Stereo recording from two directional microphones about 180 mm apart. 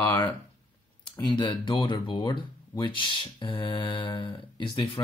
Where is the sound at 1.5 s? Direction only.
25° left (ahead or behind).